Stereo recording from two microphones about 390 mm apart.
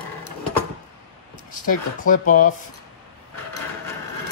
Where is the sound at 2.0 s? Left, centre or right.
Centre.